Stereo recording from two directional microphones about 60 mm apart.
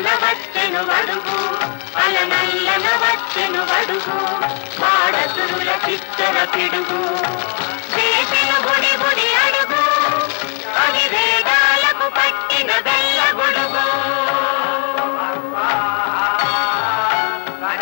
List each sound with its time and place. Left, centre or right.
0.0 s music: left
7.9 s music of bollywood: left
10.8 s music: left